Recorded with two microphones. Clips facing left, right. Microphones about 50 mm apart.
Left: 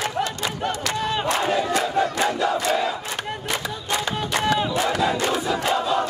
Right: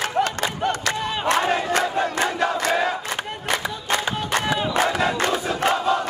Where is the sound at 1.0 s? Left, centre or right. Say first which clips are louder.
Left 2 dB; centre.